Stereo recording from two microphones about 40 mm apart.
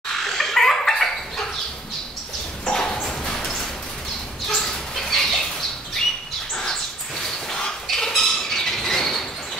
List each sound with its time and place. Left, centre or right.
0.4 s fowl: centre
2.6 s a sound: centre
4.5 s bird: centre
6.5 s bird: centre
7.9 s bird: centre